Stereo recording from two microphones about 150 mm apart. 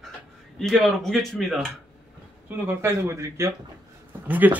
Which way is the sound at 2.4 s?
15° right (ahead or behind).